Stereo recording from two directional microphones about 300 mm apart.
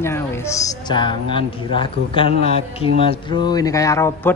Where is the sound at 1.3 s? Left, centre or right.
Centre.